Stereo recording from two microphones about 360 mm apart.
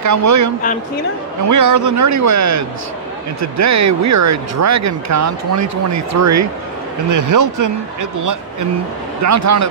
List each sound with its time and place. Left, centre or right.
0.0 s speech: right
1.5 s speech: right